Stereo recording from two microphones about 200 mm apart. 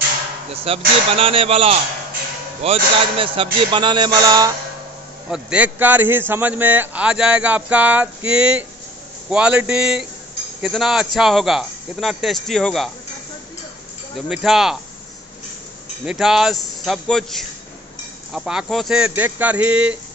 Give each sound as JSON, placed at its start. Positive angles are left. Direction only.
{"t": 0.7, "sound": "a man's voice", "side_deg": -30}
{"t": 5.3, "sound": "speech", "side_deg": -5}
{"t": 14.1, "sound": "speech", "side_deg": 0}
{"t": 16.1, "sound": "speech", "side_deg": 0}